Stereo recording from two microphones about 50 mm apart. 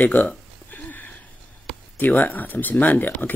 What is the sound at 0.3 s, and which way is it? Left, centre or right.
Burping, left.